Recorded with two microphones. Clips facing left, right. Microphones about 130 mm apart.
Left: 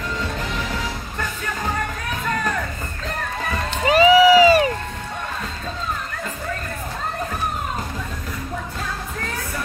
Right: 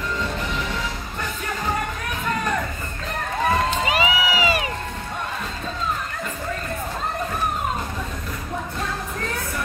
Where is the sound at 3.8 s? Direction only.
40° left (ahead or behind).